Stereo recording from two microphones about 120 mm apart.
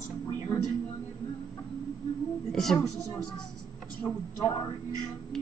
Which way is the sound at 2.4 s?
5° left (ahead or behind).